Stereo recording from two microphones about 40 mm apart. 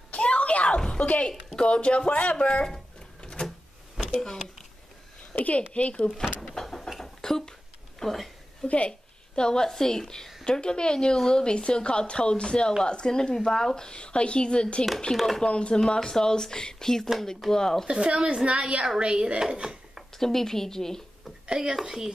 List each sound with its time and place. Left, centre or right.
0.1 s a sound: left
0.7 s music: left
1.5 s a woman's voice: left
2.7 s a sound: centre
5.3 s a woman's voice: left
5.7 s speech: left
6.6 s a sound: centre
8.0 s speech: centre
8.6 s a woman's voice: left
15.8 s speech: centre
18.0 s a woman's voice: right
20.2 s speech: centre
21.5 s speech: right